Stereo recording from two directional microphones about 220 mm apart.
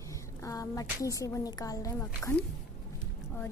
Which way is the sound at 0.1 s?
15° left (ahead or behind).